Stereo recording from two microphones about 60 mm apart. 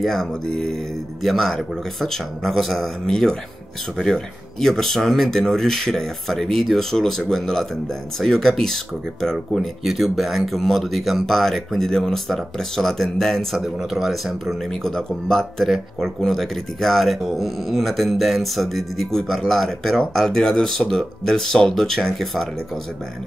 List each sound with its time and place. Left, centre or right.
0.0 s speech: centre
13.7 s speech: centre